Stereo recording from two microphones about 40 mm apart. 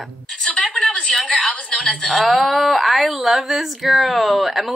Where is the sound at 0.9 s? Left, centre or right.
Left.